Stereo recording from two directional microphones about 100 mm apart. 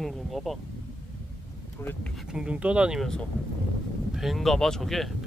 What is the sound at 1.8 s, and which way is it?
Speech, 25° left (ahead or behind).